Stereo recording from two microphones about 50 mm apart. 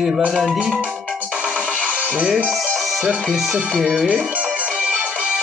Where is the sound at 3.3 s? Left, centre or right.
Centre.